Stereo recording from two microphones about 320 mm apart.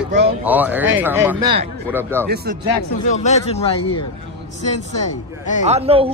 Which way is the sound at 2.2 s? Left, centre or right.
Right.